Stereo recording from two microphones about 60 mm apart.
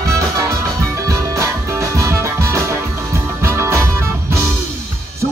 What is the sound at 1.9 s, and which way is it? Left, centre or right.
Music, right.